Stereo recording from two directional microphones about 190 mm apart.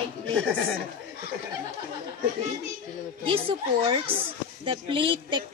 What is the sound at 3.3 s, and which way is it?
A woman's voice, 30° right (ahead or behind).